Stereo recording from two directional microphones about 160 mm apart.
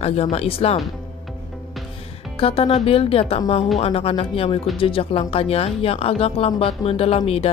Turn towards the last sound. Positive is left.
turn(degrees=40)  # may be behind; listen again after turning